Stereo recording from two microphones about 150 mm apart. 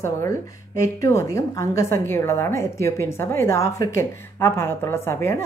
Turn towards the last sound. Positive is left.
turn(degrees=15)  # may be behind; listen again after turning